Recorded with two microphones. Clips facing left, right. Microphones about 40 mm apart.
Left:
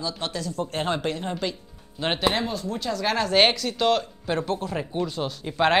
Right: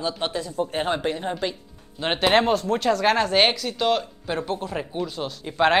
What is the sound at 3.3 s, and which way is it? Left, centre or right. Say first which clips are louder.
Speech: even; centre.